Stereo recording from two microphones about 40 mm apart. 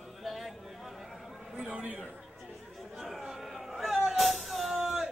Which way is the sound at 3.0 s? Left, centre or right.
Centre.